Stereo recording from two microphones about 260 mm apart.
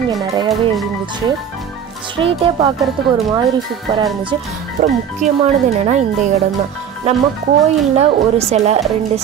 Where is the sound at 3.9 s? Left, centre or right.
Centre.